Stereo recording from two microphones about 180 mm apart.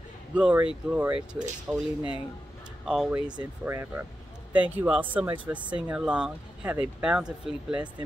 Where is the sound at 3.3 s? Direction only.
15° right (ahead or behind).